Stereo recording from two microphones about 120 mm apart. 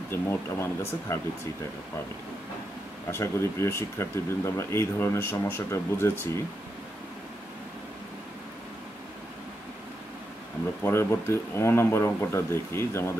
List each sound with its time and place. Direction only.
0.1 s speech: 20° left (ahead or behind)
3.1 s speech: 20° left (ahead or behind)
10.8 s speech: 20° left (ahead or behind)